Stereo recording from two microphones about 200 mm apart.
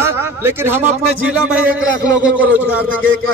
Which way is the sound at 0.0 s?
10° right (ahead or behind).